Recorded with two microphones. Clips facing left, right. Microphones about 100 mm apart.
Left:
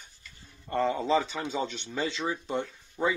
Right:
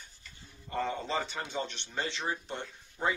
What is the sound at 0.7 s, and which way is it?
Speech, 90° left.